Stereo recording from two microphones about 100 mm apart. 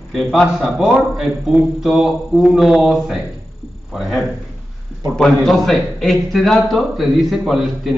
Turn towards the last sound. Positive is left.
turn(degrees=0)  # may be behind; listen again after turning